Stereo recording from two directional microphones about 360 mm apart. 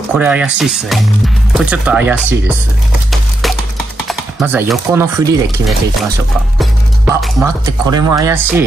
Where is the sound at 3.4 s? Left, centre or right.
Centre.